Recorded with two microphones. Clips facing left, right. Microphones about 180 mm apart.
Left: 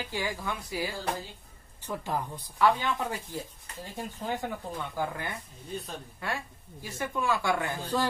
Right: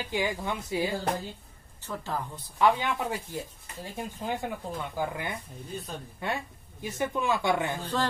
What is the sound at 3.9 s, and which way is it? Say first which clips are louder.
Speech: right 1 dB; 10° right (ahead or behind).